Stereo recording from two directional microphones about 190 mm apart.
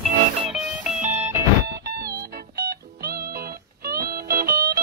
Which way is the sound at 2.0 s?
55° right (ahead or behind).